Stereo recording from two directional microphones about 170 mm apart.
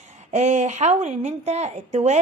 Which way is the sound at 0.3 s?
45° right (ahead or behind).